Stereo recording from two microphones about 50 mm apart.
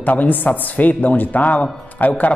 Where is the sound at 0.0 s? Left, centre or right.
Left.